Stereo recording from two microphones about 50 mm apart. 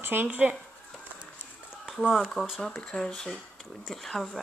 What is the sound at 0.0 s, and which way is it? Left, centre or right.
Speech, right.